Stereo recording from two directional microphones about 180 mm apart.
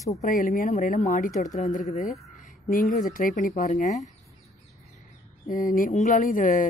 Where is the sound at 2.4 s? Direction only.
50° left (ahead or behind).